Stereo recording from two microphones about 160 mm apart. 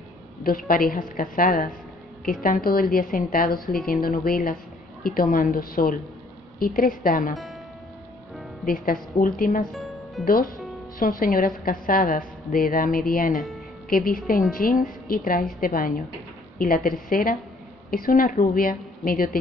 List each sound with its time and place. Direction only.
0.4 s a woman's voice: 65° left (ahead or behind)
8.6 s a woman's voice: 65° left (ahead or behind)
9.7 s music: centre (ahead or behind)
10.2 s a woman's voice: 65° left (ahead or behind)
13.3 s speech: centre (ahead or behind)
13.8 s a woman's voice: 65° left (ahead or behind)